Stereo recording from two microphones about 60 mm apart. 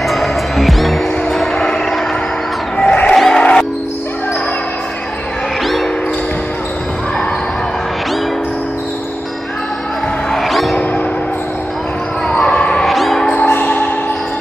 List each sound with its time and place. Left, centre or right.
0.0 s music: centre
5.6 s music: centre
10.3 s music: centre
12.3 s basketball bounce: centre
12.8 s music: centre
13.2 s music: centre
13.5 s music: left